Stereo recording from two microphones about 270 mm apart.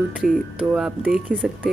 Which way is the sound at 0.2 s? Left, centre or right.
Centre.